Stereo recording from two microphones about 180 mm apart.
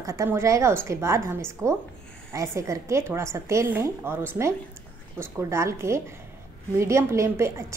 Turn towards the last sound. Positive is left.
turn(degrees=-15)  # may be behind; listen again after turning